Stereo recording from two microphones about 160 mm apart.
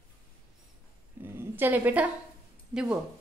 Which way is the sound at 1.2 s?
15° right (ahead or behind).